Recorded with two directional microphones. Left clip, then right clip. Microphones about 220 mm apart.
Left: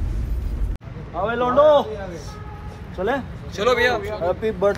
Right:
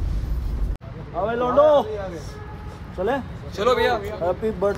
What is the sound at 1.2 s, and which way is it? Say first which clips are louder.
Speech: left 1 dB; 10° right (ahead or behind).